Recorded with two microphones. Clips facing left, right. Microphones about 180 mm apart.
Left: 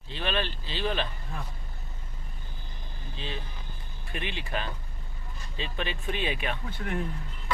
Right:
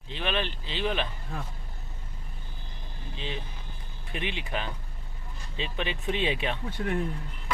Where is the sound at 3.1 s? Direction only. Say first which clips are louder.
Right 1 dB; 15° right (ahead or behind).